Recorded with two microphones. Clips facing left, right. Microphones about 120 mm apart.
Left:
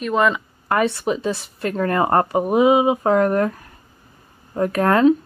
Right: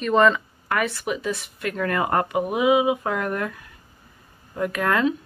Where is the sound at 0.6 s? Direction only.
30° left (ahead or behind).